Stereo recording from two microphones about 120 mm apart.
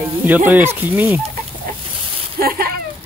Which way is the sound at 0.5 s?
15° right (ahead or behind).